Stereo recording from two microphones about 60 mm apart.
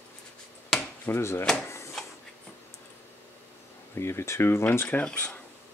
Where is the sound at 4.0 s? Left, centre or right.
Left.